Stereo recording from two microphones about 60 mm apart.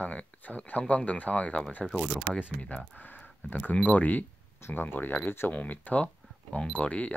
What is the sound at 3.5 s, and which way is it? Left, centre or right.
Speech, left.